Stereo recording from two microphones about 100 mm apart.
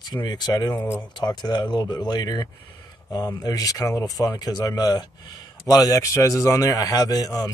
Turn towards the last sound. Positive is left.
turn(degrees=40)  # may be behind; listen again after turning